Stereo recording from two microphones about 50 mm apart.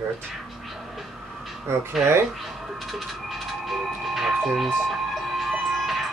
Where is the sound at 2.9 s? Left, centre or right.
Centre.